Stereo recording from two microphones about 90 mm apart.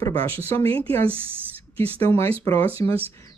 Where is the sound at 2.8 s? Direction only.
40° left (ahead or behind).